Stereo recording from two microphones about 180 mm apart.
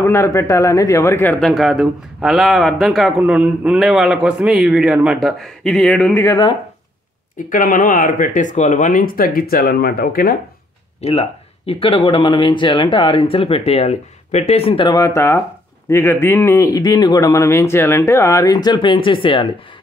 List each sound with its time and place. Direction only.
0.0 s speech: 15° left (ahead or behind)
1.4 s speech: centre (ahead or behind)
7.3 s speech: 45° left (ahead or behind)
11.0 s speech: 35° left (ahead or behind)